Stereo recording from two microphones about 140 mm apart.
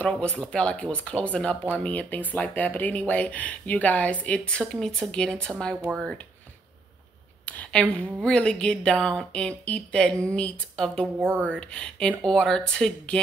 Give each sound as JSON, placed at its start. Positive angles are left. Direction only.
{"t": 0.0, "sound": "speech", "side_deg": 10}
{"t": 7.4, "sound": "speech", "side_deg": 10}
{"t": 11.1, "sound": "speech", "side_deg": -15}
{"t": 11.6, "sound": "speech", "side_deg": 5}